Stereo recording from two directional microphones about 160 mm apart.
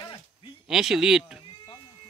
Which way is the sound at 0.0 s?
30° left (ahead or behind).